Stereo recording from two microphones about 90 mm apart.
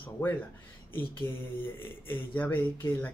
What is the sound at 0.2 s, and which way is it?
Speech, 25° left (ahead or behind).